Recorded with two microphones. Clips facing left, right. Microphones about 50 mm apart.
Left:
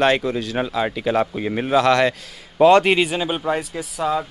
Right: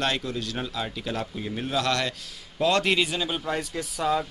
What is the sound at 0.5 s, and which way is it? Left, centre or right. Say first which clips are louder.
Speech: left 9 dB; left.